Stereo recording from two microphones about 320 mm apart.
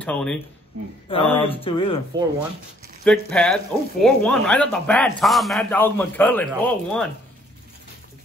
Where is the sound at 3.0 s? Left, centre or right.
Centre.